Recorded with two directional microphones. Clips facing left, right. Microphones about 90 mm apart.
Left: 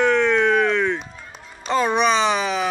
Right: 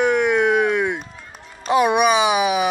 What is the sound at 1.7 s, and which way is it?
Speech, 15° right (ahead or behind).